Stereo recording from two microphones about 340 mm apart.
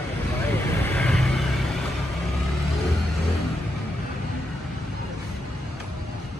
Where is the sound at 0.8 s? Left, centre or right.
Centre.